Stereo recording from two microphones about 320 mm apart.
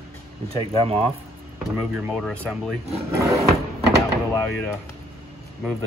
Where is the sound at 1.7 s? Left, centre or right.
Centre.